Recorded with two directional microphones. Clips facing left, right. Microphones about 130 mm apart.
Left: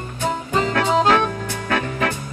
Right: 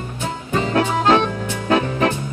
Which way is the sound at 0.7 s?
25° right (ahead or behind).